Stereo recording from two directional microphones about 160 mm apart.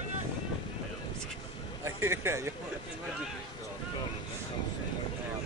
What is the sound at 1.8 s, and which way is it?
Speech, 15° right (ahead or behind).